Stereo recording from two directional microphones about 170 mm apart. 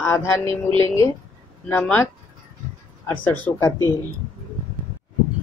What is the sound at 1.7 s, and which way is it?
Speech, 10° left (ahead or behind).